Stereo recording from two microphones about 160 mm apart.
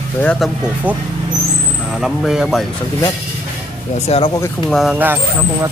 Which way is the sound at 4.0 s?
40° left (ahead or behind).